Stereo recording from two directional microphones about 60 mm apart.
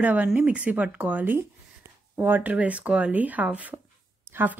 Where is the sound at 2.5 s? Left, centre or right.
Right.